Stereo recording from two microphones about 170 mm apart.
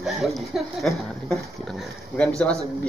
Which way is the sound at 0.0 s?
Centre (ahead or behind).